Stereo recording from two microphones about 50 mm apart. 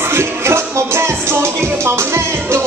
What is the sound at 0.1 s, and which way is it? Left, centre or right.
Music, right.